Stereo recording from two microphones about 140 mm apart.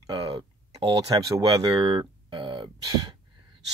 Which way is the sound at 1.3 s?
25° right (ahead or behind).